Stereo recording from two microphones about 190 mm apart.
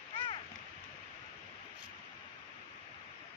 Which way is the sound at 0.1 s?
30° left (ahead or behind).